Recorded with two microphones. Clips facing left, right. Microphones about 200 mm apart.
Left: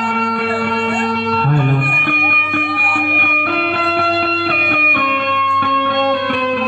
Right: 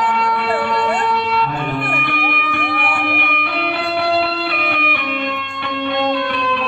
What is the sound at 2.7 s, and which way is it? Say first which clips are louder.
Music: right 1 dB; 55° right (ahead or behind).